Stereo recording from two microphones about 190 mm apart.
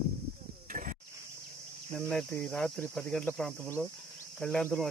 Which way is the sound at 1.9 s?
5° left (ahead or behind).